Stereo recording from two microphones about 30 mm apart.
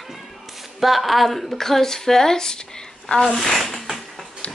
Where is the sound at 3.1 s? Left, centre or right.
Left.